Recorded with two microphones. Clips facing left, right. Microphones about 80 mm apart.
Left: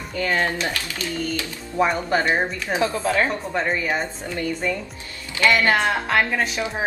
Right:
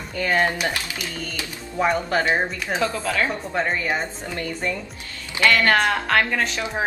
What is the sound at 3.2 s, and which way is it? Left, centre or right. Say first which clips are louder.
Speech: left 1 dB; centre.